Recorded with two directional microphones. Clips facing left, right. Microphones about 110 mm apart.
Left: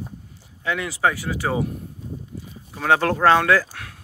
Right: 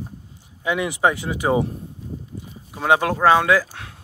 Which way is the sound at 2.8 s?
15° right (ahead or behind).